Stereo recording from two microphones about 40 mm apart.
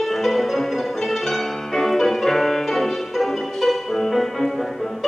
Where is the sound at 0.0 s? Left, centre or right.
Centre.